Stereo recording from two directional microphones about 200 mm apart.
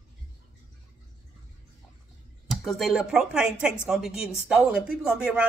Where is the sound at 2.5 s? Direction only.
Centre (ahead or behind).